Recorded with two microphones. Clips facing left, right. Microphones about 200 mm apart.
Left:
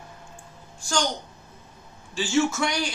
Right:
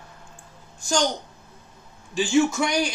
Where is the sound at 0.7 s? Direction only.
20° right (ahead or behind).